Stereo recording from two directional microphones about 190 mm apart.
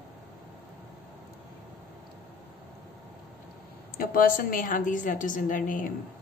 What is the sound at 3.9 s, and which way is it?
Speech, 50° left (ahead or behind).